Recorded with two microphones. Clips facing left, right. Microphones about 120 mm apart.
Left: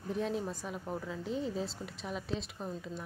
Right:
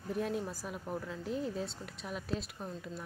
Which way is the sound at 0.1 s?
Centre (ahead or behind).